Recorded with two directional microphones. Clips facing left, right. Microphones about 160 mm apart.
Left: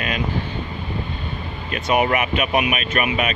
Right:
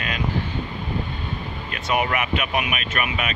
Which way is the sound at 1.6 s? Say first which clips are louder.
Left 5 dB; 20° left (ahead or behind).